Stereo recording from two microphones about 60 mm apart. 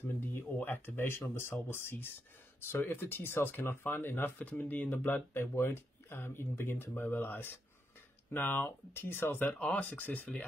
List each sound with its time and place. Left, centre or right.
0.4 s speech: left
4.4 s speech: left
5.4 s speech: left
9.5 s speech: left